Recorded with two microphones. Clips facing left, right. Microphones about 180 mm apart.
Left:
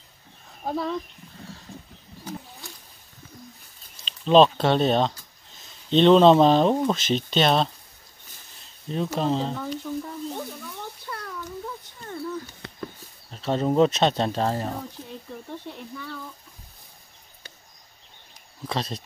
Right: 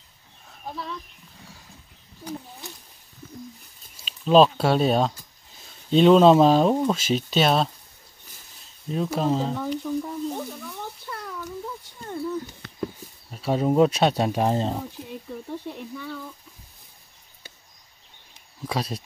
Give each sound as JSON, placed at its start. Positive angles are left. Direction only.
{"t": 0.7, "sound": "speech", "side_deg": 50}
{"t": 3.9, "sound": "speech", "side_deg": -5}
{"t": 8.8, "sound": "speech", "side_deg": -5}
{"t": 11.6, "sound": "a sound", "side_deg": -10}
{"t": 12.8, "sound": "speech", "side_deg": -10}
{"t": 18.7, "sound": "speech", "side_deg": -10}